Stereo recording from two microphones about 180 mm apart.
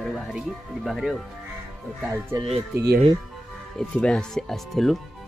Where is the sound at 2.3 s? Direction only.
30° right (ahead or behind).